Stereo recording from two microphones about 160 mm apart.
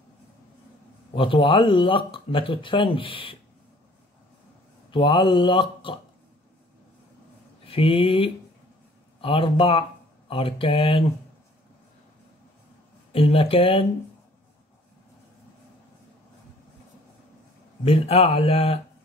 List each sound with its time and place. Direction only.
1.1 s speech: 35° left (ahead or behind)
4.9 s speech: 30° left (ahead or behind)
7.6 s speech: 35° left (ahead or behind)
13.1 s speech: 35° left (ahead or behind)
17.8 s speech: 40° left (ahead or behind)